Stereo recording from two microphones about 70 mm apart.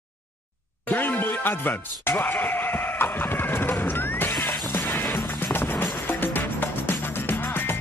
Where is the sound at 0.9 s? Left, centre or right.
Left.